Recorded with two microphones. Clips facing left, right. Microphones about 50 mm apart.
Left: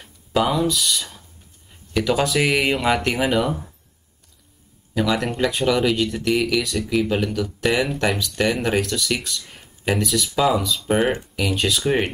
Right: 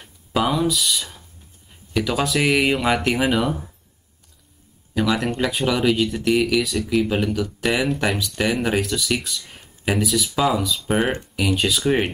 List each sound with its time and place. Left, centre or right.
0.0 s speech: centre
4.9 s speech: centre